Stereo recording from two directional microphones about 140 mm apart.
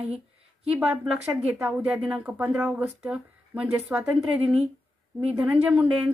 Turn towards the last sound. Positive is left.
turn(degrees=-10)  # may be behind; listen again after turning